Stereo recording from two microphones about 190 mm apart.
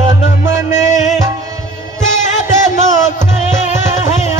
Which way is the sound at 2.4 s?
40° left (ahead or behind).